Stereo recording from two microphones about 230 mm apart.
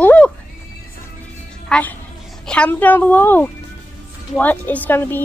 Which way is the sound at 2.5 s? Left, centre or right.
Centre.